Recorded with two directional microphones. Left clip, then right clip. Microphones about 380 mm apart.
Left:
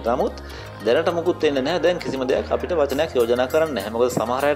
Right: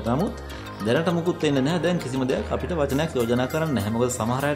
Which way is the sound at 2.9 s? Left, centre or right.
Right.